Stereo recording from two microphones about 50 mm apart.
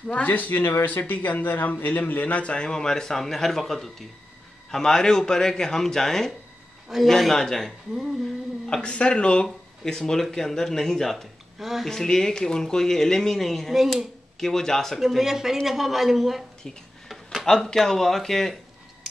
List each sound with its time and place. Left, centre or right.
0.1 s speech: left; by 7.7 s centre
8.8 s speech: centre
11.6 s a woman's voice: centre
11.9 s speech: centre
15.0 s a woman's voice: centre
17.5 s speech: centre